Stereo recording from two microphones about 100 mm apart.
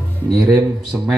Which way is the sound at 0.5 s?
15° right (ahead or behind).